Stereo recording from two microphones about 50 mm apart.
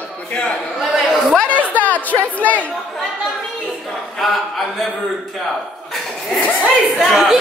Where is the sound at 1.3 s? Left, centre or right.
Left.